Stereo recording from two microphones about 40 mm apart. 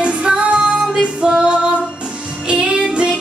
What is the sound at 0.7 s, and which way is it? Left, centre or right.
Music, centre.